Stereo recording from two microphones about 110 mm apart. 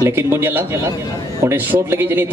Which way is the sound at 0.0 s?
20° right (ahead or behind).